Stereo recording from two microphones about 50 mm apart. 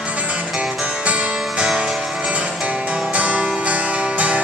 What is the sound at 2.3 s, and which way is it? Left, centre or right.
Music, right.